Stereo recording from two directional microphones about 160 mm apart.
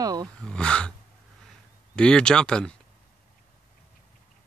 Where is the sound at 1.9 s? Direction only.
5° left (ahead or behind).